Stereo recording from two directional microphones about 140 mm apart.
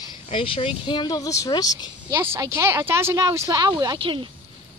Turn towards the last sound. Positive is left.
turn(degrees=-40)  # may be behind; listen again after turning